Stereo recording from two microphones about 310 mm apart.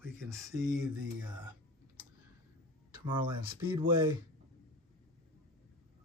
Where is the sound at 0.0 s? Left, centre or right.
Centre.